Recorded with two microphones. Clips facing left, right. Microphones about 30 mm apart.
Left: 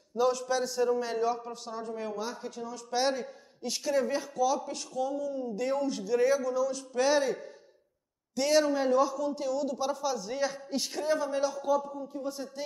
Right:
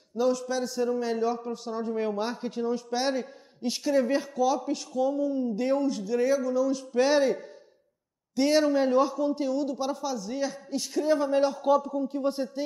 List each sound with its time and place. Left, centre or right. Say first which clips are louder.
0.2 s a man's voice: right 1 dB; centre
2.0 s speech: right 7 dB; right
2.9 s a man's voice: right 1 dB; centre
5.2 s a man's voice: right 5 dB; right
5.9 s a man's voice: right 1 dB; centre
8.4 s a man's voice: right 3 dB; centre
10.1 s a man's voice: right 1 dB; centre
11.1 s speech: right 5 dB; right
11.8 s speech: right 8 dB; right
12.6 s a man's voice: right 6 dB; centre